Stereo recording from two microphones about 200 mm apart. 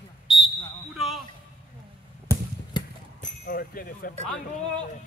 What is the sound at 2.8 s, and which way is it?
Clip-clop, 20° left (ahead or behind).